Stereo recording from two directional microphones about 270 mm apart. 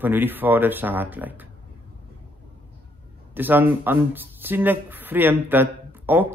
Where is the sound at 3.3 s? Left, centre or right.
Centre.